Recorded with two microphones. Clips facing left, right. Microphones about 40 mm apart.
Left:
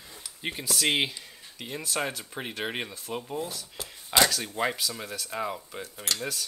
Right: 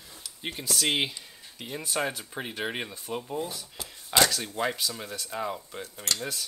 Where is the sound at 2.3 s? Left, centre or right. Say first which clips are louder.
Even; centre.